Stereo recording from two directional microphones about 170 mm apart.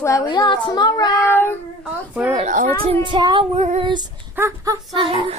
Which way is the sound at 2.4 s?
50° right (ahead or behind).